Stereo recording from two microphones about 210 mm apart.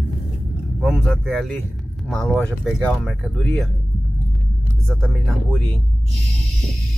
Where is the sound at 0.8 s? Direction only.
Centre (ahead or behind).